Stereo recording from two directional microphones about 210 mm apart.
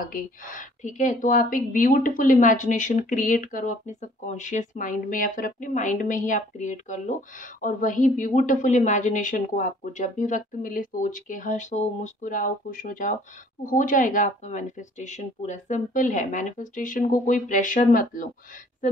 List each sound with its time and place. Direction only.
0.0 s speech: 40° left (ahead or behind)